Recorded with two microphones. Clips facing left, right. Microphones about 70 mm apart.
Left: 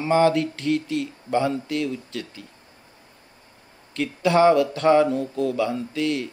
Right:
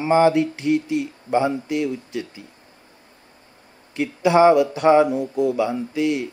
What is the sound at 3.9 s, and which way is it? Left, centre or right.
Speech, centre.